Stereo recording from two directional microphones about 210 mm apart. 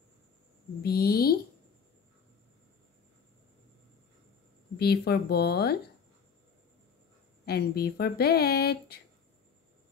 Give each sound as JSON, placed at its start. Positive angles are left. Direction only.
{"t": 0.8, "sound": "a sound", "side_deg": 45}
{"t": 4.7, "sound": "speech", "side_deg": 50}
{"t": 7.4, "sound": "speech", "side_deg": 50}